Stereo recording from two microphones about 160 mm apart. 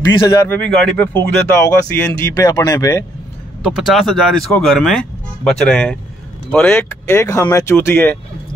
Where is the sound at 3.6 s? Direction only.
Centre (ahead or behind).